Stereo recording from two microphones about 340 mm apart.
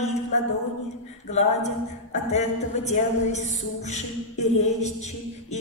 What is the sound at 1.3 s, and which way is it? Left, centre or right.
Music, centre.